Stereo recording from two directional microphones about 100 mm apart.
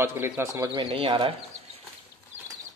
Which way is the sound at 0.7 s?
55° right (ahead or behind).